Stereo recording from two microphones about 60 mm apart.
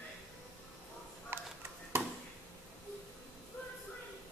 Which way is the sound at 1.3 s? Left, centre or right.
Right.